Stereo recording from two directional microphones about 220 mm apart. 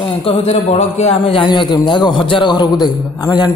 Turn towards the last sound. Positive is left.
turn(degrees=15)  # may be behind; listen again after turning